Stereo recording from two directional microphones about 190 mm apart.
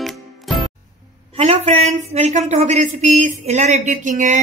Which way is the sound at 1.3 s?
35° right (ahead or behind).